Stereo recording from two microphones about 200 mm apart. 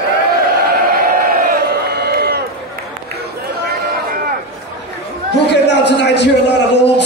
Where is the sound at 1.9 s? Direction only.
55° right (ahead or behind).